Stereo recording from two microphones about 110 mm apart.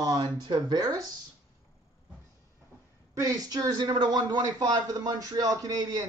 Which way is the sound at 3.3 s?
35° right (ahead or behind).